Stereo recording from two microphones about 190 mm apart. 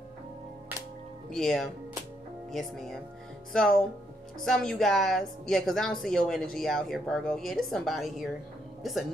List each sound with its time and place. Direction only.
1.3 s speech: centre (ahead or behind)